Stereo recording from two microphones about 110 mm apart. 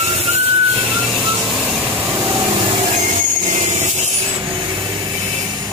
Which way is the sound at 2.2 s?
50° right (ahead or behind).